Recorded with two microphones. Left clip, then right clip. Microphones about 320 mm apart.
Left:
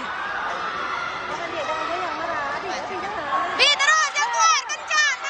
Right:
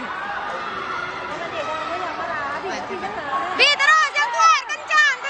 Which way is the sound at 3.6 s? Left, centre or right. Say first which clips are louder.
Right 3 dB; centre.